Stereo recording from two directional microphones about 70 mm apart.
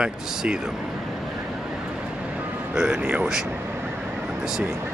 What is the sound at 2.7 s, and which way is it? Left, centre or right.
Speech, centre.